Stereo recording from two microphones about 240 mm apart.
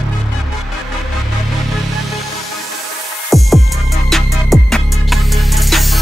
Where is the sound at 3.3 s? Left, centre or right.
Centre.